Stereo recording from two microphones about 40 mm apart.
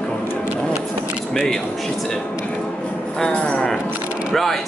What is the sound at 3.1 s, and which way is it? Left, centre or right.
Music, centre.